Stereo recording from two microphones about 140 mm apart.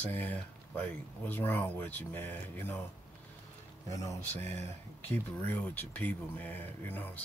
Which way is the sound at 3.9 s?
20° left (ahead or behind).